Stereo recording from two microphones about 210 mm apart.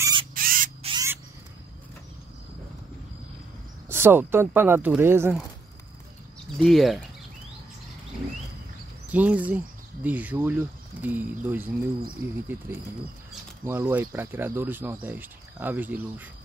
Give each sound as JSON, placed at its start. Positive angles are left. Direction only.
{"t": 0.0, "sound": "rodents", "side_deg": -20}
{"t": 0.3, "sound": "rodents", "side_deg": -40}
{"t": 0.8, "sound": "a sound", "side_deg": -20}
{"t": 3.9, "sound": "speech", "side_deg": -10}
{"t": 6.6, "sound": "speech", "side_deg": 0}
{"t": 9.1, "sound": "speech", "side_deg": -5}